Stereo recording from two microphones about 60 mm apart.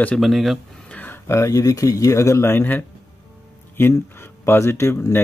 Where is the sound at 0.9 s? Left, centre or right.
Left.